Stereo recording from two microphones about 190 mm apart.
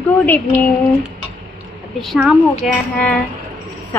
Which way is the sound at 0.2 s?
10° left (ahead or behind).